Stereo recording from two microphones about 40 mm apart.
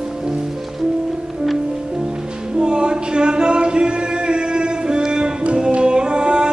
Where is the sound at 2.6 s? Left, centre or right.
Right.